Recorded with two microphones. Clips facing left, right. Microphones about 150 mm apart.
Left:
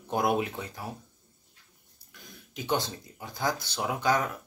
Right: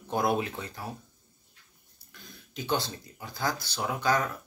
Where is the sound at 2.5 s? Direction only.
15° left (ahead or behind).